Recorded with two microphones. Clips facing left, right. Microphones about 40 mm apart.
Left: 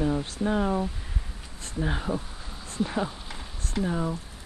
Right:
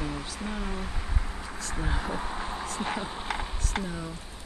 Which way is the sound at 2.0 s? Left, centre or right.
Right.